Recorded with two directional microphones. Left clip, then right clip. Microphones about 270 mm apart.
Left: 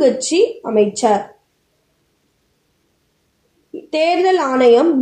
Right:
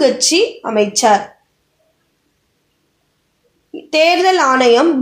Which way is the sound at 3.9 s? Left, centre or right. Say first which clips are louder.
Right 3 dB; right.